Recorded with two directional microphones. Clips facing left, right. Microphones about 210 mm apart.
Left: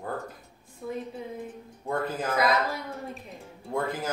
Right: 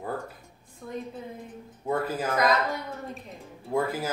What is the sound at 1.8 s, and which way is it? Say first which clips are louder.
Speech: right 2 dB; 5° right (ahead or behind).